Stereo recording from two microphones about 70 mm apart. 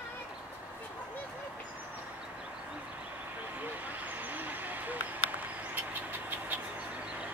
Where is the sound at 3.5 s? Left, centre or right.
Right.